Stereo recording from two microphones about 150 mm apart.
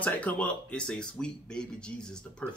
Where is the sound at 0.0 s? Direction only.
10° left (ahead or behind).